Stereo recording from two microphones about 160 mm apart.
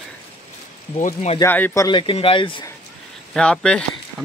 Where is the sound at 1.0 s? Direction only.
50° left (ahead or behind).